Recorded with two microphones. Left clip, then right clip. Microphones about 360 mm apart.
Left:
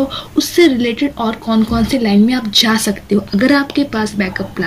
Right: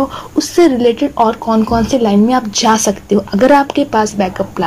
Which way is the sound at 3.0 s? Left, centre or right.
Right.